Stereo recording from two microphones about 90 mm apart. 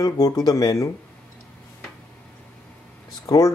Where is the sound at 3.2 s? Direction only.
40° left (ahead or behind).